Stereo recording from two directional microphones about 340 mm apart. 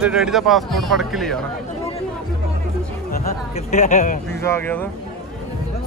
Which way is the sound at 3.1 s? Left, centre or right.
Left.